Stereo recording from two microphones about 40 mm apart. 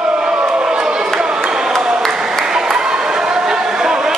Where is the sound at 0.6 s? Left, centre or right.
Right.